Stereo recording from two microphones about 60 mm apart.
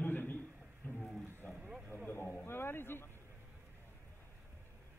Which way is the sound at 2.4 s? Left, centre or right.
Left.